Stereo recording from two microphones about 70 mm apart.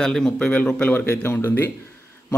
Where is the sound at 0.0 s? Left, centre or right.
Centre.